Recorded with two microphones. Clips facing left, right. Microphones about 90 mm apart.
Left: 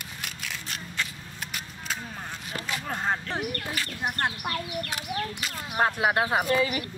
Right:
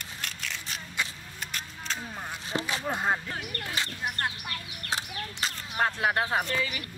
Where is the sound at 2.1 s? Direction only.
10° right (ahead or behind).